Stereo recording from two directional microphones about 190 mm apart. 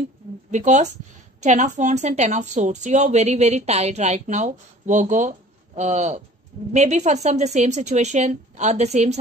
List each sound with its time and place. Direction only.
0.5 s a woman's voice: 40° right (ahead or behind)